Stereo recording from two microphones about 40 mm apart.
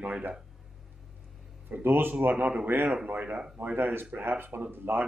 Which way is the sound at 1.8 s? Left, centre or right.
Right.